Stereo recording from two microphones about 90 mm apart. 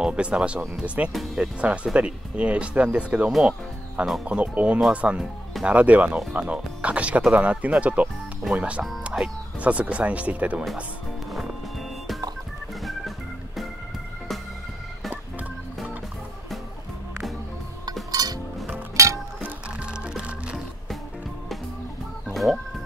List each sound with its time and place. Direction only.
0.0 s speech: 10° right (ahead or behind)
1.1 s speech: 5° right (ahead or behind)
1.6 s speech: 15° right (ahead or behind)
4.0 s speech: 5° right (ahead or behind)
4.3 s speech: 15° right (ahead or behind)
18.1 s music: 45° right (ahead or behind)
19.0 s music: 35° right (ahead or behind)
19.4 s music: 15° right (ahead or behind)
22.3 s music: centre (ahead or behind)